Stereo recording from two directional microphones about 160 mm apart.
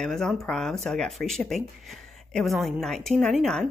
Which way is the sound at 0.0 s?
Centre (ahead or behind).